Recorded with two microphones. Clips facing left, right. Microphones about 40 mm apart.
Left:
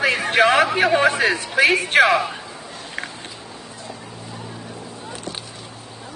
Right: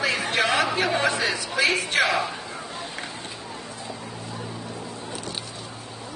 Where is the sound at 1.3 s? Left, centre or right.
Left.